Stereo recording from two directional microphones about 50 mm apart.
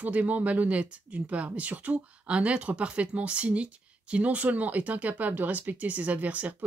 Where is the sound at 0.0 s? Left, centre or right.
Right.